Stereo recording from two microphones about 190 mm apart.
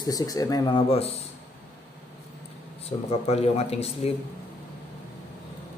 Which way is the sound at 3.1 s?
35° left (ahead or behind).